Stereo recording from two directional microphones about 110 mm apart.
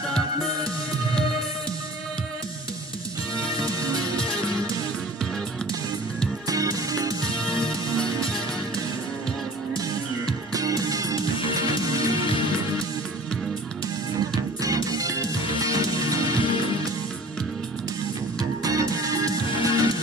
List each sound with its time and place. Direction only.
3.5 s music: 35° right (ahead or behind)
4.2 s music: 5° left (ahead or behind)
6.4 s music: 35° right (ahead or behind)
7.4 s music: 50° left (ahead or behind)
10.5 s music: 35° right (ahead or behind)
14.6 s music: 35° right (ahead or behind)
16.3 s music: 50° left (ahead or behind)
18.4 s music: 35° right (ahead or behind)